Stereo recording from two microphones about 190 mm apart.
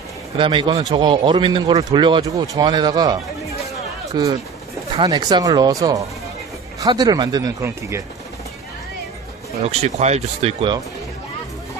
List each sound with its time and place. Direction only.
0.4 s a man's voice: 25° right (ahead or behind)
9.6 s speech: 35° right (ahead or behind)